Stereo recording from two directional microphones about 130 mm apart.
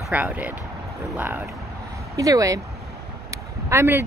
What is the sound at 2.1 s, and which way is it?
Speech, 25° right (ahead or behind).